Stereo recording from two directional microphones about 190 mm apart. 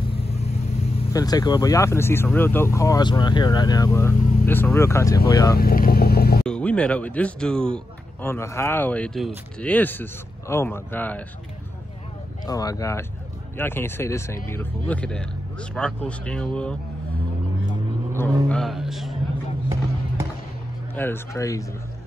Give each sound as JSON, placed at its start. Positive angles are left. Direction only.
{"t": 0.1, "sound": "vehicle", "side_deg": 30}
{"t": 1.1, "sound": "speech", "side_deg": 20}
{"t": 5.6, "sound": "vehicle", "side_deg": 50}
{"t": 6.4, "sound": "speech", "side_deg": 5}
{"t": 12.4, "sound": "speech", "side_deg": 20}
{"t": 18.6, "sound": "a man's voice", "side_deg": 0}
{"t": 20.9, "sound": "speech", "side_deg": 10}